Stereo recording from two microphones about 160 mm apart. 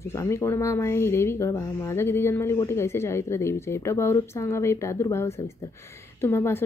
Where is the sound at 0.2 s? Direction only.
15° left (ahead or behind).